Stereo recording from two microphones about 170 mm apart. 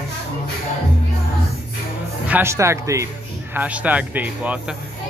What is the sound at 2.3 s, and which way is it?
Speech, 15° right (ahead or behind).